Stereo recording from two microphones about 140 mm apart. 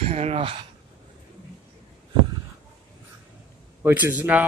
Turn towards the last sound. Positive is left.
turn(degrees=-10)  # may be behind; listen again after turning